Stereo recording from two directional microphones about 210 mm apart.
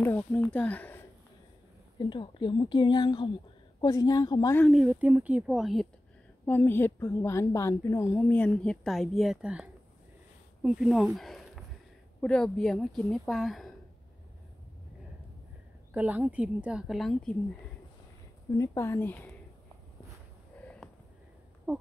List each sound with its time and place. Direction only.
0.0 s speech: 10° left (ahead or behind)
2.0 s a woman's voice: 20° left (ahead or behind)
4.6 s speech: 5° right (ahead or behind)
6.4 s a woman's voice: 10° left (ahead or behind)
15.9 s speech: 10° right (ahead or behind)
18.5 s a woman's voice: 15° left (ahead or behind)